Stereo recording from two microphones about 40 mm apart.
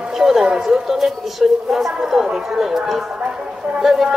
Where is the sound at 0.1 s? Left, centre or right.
Centre.